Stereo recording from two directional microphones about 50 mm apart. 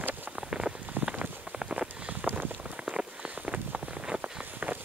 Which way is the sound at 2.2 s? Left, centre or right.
Right.